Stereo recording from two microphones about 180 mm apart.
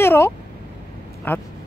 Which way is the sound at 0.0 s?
15° left (ahead or behind).